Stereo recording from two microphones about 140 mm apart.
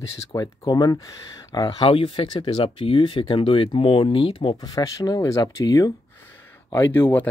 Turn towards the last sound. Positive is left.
turn(degrees=15)  # may be behind; listen again after turning